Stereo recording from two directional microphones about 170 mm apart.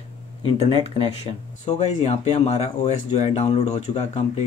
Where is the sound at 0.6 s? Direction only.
35° left (ahead or behind).